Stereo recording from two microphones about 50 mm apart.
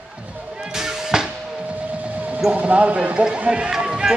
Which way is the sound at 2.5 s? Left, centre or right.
Right.